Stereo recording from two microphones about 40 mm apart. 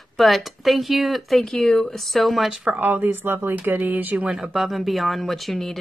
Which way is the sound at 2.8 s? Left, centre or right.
Right.